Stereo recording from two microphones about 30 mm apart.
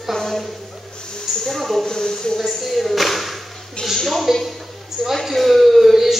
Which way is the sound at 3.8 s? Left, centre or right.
Left.